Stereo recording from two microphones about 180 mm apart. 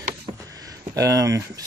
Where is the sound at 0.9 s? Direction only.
20° right (ahead or behind).